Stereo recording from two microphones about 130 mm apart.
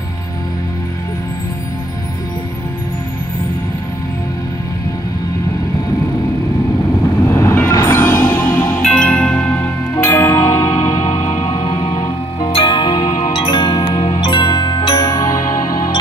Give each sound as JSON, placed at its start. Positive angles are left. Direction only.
{"t": 7.2, "sound": "music", "side_deg": 20}
{"t": 11.8, "sound": "music", "side_deg": 30}
{"t": 13.3, "sound": "music", "side_deg": 40}